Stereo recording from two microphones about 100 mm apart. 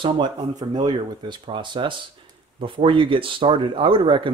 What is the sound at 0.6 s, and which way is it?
Speech, 45° right (ahead or behind).